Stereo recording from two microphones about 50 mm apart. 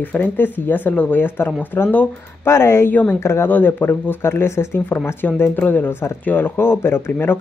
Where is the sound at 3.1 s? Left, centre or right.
Left.